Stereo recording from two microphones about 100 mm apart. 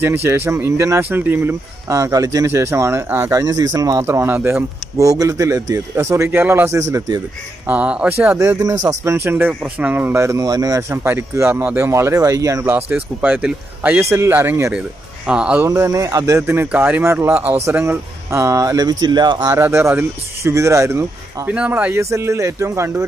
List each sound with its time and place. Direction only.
0.0 s a man's voice: 25° right (ahead or behind)
3.3 s a man's voice: 35° right (ahead or behind)
4.0 s a man's voice: 25° right (ahead or behind)
4.9 s a man's voice: 35° right (ahead or behind)
7.6 s speech: 15° right (ahead or behind)
8.4 s a man's voice: 30° right (ahead or behind)
12.6 s a man's voice: 20° right (ahead or behind)
15.2 s speech: 10° right (ahead or behind)
15.7 s a man's voice: 30° right (ahead or behind); by 19.4 s 50° right (ahead or behind)
19.4 s a man's voice: 30° right (ahead or behind)
21.5 s speech: 15° right (ahead or behind)
21.9 s a man's voice: 30° right (ahead or behind)